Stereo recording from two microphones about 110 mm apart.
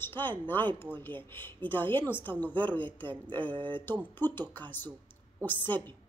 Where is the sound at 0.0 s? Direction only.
20° left (ahead or behind).